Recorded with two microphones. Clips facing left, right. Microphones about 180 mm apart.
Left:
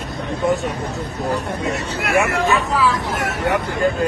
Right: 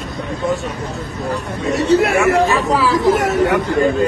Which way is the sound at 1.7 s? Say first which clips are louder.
Right 10 dB; 35° right (ahead or behind).